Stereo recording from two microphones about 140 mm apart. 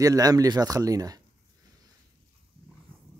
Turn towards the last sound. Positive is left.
turn(degrees=-25)  # may be behind; listen again after turning